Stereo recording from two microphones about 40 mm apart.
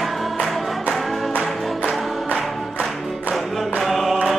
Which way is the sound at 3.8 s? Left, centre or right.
Centre.